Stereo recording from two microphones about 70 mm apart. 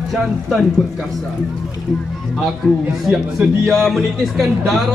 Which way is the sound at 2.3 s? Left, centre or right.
Centre.